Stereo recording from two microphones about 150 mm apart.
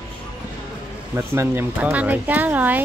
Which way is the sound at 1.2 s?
15° right (ahead or behind).